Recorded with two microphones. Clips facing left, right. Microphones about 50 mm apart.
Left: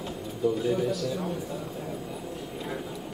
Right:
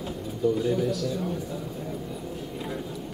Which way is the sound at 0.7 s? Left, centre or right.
Centre.